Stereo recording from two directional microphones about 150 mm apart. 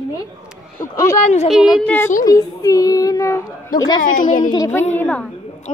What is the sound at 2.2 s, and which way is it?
A child's voice, 25° left (ahead or behind).